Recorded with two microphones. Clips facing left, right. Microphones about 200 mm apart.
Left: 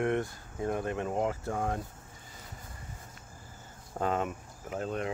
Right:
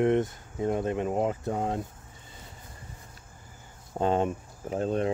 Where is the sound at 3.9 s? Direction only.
30° right (ahead or behind).